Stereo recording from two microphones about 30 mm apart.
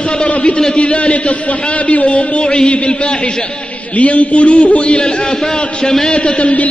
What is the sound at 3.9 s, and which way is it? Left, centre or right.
A man's voice, left.